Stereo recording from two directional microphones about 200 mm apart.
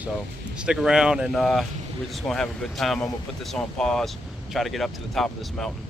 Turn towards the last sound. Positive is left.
turn(degrees=0)  # may be behind; listen again after turning